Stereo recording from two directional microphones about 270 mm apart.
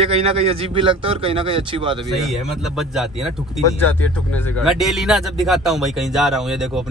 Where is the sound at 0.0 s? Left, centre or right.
Right.